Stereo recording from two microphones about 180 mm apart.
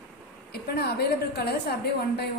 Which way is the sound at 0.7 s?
60° left (ahead or behind).